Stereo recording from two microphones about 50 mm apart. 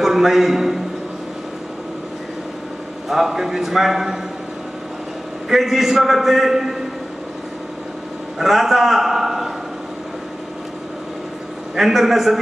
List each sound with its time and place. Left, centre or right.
0.0 s a man's voice: centre
3.1 s a man's voice: centre
5.5 s a man's voice: centre
8.4 s a man's voice: centre
11.7 s a man's voice: centre